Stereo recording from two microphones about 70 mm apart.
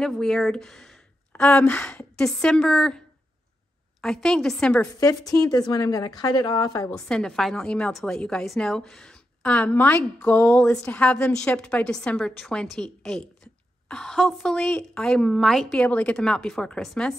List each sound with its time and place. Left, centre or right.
0.0 s a woman's voice: centre
4.0 s a woman's voice: centre
5.4 s a woman's voice: left
6.9 s a woman's voice: centre; by 10.6 s left
10.6 s a woman's voice: centre